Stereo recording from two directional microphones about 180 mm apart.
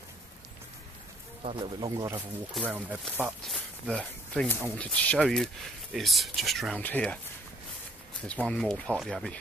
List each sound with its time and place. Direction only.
1.4 s speech: 30° right (ahead or behind)
1.8 s speech: 20° right (ahead or behind)
3.4 s speech: 5° left (ahead or behind)
8.5 s speech: 5° left (ahead or behind)